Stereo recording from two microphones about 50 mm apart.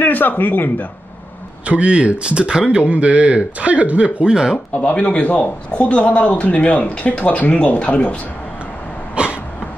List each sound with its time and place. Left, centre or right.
0.0 s speech: left
1.7 s speech: right
4.7 s speech: left
9.2 s cough: right